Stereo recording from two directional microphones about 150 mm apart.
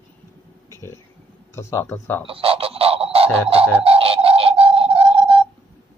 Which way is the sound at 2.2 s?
40° right (ahead or behind).